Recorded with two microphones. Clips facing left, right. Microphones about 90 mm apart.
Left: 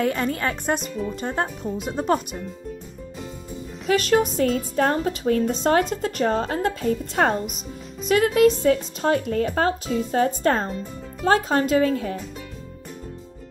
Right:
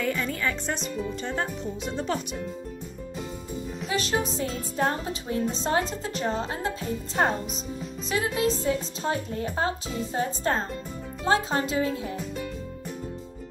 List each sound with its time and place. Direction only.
0.0 s speech: 50° left (ahead or behind)
3.8 s speech: 55° left (ahead or behind)
4.4 s speech: 70° left (ahead or behind)
8.1 s speech: 60° left (ahead or behind)
11.2 s speech: 55° left (ahead or behind)